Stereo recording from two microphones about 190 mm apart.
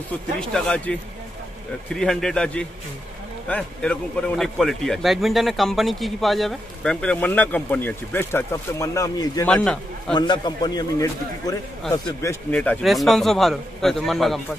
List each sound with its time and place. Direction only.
0.4 s speech: 5° left (ahead or behind)
2.0 s speech: centre (ahead or behind); by 9.5 s 20° left (ahead or behind)
9.5 s speech: 5° left (ahead or behind)
10.1 s a man's voice: 25° left (ahead or behind); by 14.4 s centre (ahead or behind)